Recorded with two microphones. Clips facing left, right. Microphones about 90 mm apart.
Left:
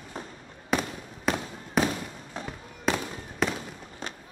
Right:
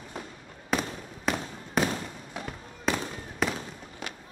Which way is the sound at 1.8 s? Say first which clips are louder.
Left 1 dB; centre (ahead or behind).